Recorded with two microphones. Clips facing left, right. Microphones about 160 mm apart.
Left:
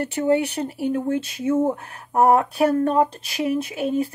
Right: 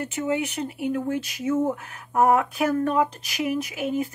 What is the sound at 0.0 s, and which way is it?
Speech, 35° left (ahead or behind).